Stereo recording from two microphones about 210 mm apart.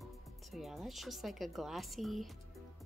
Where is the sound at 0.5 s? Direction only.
Centre (ahead or behind).